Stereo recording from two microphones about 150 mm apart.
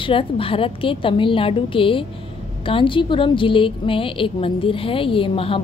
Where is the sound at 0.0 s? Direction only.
35° left (ahead or behind).